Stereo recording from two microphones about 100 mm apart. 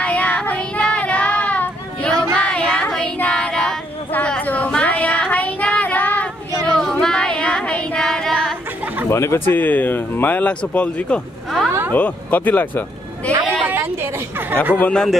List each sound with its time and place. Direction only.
0.0 s child singing: 15° left (ahead or behind)
9.1 s speech: 25° left (ahead or behind)
11.6 s a sound: 5° left (ahead or behind)
11.9 s speech: 15° left (ahead or behind)
13.7 s a sound: 20° right (ahead or behind)
14.8 s speech: 10° left (ahead or behind)